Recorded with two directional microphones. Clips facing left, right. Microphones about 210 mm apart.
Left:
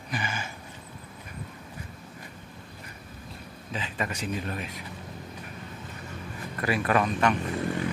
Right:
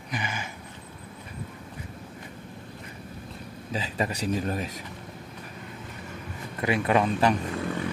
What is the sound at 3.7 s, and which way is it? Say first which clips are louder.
Speech: right 3 dB; 35° right (ahead or behind).